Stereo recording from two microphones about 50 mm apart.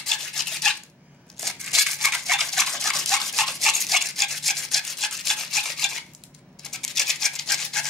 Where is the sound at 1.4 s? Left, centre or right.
Centre.